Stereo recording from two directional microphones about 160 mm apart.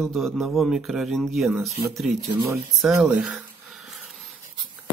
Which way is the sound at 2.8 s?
Centre (ahead or behind).